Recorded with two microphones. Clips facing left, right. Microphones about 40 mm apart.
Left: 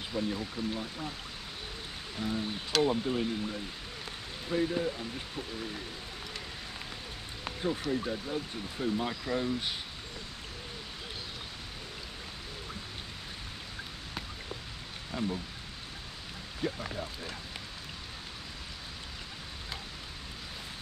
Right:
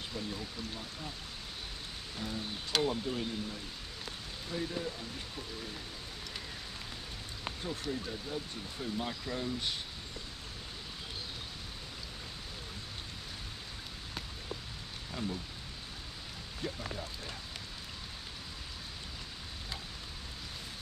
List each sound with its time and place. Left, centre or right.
0.1 s speech: centre
2.1 s speech: centre
8.0 s speech: left
15.0 s speech: centre
16.6 s speech: centre